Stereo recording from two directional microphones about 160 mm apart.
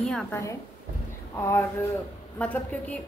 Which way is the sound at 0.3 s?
20° left (ahead or behind).